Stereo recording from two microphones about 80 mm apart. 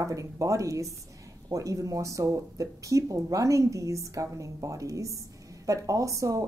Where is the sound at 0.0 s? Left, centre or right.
Right.